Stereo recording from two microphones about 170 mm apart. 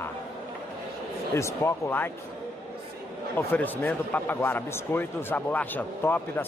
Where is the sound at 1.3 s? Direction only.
15° left (ahead or behind).